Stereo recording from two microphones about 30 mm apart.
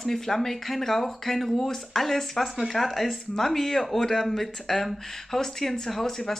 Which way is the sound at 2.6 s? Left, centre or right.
Centre.